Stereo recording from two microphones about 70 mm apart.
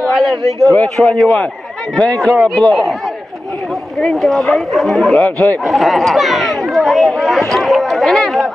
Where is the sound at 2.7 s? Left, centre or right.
Centre.